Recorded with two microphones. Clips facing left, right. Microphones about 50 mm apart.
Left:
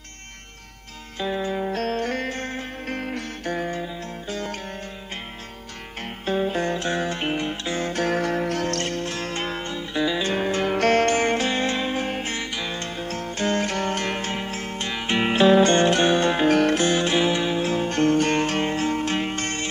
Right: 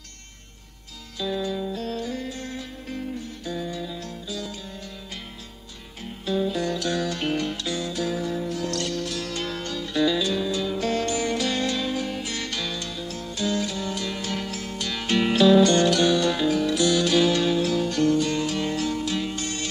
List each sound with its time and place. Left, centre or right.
1.2 s music: left
1.7 s music: left
3.8 s music: left
6.0 s music: left
7.8 s music: left
10.2 s music: left
12.4 s music: left
12.7 s music: left
14.3 s music: left
16.4 s music: left
16.8 s music: left